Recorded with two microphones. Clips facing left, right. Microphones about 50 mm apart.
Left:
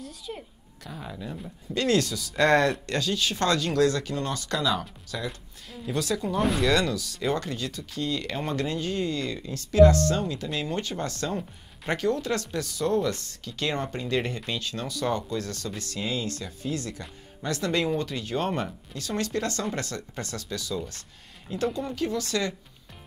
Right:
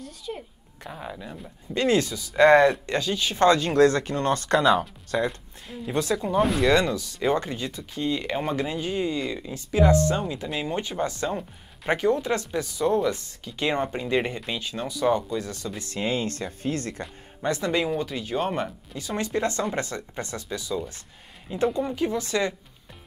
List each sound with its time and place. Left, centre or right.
0.3 s speech: centre; by 5.3 s right
5.7 s speech: right
6.4 s speech: centre
6.7 s speech: centre
15.9 s speech: right
17.4 s speech: centre